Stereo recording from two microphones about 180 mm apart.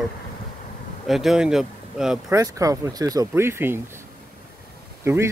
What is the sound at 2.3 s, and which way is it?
Speech, 20° right (ahead or behind).